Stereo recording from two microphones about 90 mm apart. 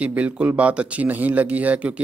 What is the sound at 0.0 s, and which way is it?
Speech, 15° right (ahead or behind).